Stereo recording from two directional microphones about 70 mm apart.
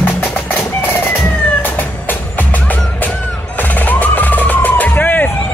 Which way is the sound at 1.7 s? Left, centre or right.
Left.